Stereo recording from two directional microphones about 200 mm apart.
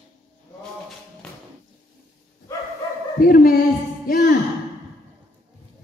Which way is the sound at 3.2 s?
45° left (ahead or behind).